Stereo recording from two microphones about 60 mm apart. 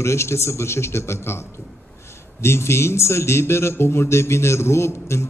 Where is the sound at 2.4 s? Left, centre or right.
Left.